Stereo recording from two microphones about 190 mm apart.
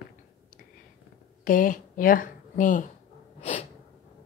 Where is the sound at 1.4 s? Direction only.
45° left (ahead or behind).